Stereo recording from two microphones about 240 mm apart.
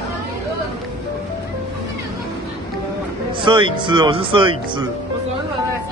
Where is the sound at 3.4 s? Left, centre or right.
Right.